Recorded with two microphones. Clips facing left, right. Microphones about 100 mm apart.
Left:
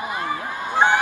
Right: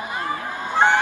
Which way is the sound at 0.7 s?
15° left (ahead or behind).